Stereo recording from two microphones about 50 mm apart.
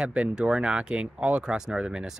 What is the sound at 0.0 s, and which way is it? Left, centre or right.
Speech, right.